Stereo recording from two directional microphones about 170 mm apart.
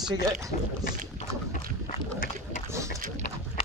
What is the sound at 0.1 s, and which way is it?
Speech, 20° right (ahead or behind).